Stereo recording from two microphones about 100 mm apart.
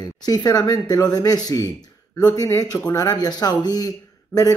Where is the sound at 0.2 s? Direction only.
40° left (ahead or behind).